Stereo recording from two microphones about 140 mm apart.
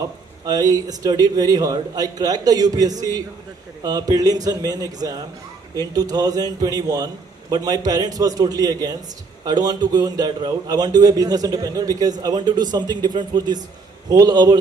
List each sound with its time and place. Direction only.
0.5 s speech: 25° right (ahead or behind)